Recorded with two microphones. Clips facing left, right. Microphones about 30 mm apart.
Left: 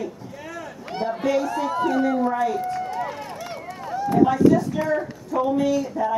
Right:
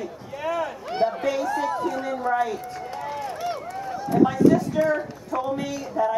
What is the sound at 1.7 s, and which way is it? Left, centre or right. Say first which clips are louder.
Speech: left 5 dB; left.